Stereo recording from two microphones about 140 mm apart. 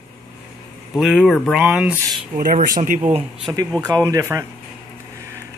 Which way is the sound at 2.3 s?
75° right (ahead or behind).